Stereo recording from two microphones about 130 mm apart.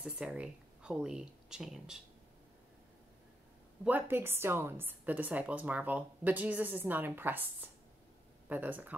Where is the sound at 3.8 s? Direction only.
15° right (ahead or behind).